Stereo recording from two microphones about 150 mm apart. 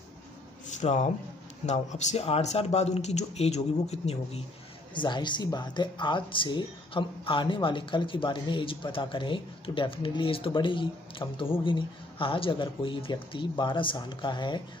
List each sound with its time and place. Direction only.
0.7 s speech: 50° left (ahead or behind)
4.9 s speech: 30° left (ahead or behind)